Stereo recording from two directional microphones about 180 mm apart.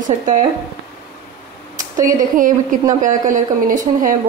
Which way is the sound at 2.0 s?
50° right (ahead or behind).